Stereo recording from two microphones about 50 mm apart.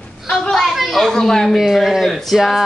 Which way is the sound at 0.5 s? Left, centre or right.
Centre.